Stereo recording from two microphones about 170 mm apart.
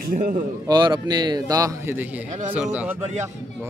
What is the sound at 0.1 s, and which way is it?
Speech, 55° right (ahead or behind).